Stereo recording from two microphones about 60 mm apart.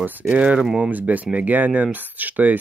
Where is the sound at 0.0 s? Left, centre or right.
Right.